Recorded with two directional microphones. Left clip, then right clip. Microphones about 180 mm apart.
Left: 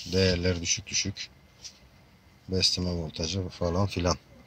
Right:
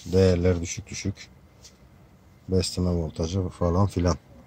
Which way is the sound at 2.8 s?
10° right (ahead or behind).